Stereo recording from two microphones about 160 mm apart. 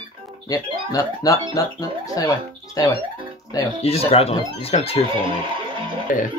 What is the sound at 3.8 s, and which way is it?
Speech, 40° left (ahead or behind).